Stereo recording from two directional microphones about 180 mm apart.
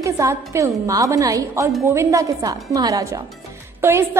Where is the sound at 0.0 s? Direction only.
15° right (ahead or behind).